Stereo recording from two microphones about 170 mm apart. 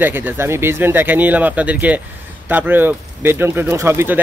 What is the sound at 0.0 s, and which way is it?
Speech, 10° right (ahead or behind).